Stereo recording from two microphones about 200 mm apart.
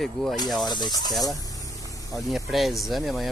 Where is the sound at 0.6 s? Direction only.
20° left (ahead or behind).